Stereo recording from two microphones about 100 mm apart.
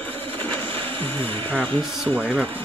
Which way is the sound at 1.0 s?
20° left (ahead or behind).